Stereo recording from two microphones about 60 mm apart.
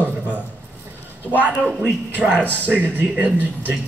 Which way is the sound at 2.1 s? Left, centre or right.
Right.